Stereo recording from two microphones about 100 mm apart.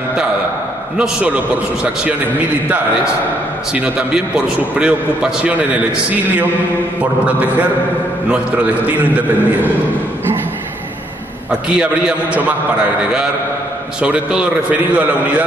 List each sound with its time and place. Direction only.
0.9 s a man's voice: 10° right (ahead or behind)
3.7 s a man's voice: 15° right (ahead or behind)
7.0 s a man's voice: 15° right (ahead or behind)
11.7 s a man's voice: 10° right (ahead or behind)
14.0 s a man's voice: 10° right (ahead or behind)